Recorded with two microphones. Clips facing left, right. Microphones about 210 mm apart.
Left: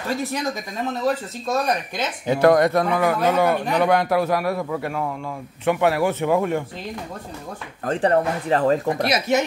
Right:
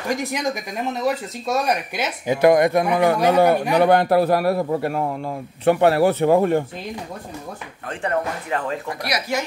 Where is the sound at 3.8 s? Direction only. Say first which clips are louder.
Right 3 dB; 30° right (ahead or behind).